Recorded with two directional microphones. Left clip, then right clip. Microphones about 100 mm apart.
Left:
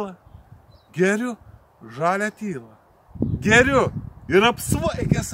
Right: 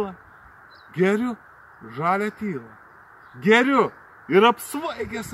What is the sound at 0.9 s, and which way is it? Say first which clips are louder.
Speech: left 1 dB; 25° left (ahead or behind).